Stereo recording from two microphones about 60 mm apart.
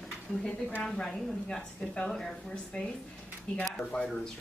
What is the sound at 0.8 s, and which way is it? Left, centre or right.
A woman's voice, centre.